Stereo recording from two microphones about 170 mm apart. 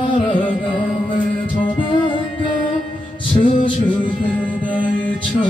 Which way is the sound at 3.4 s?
30° left (ahead or behind).